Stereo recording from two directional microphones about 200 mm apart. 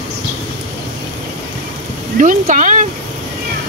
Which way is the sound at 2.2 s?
40° right (ahead or behind).